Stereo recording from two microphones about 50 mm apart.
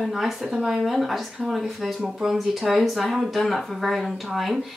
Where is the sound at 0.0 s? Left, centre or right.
Centre.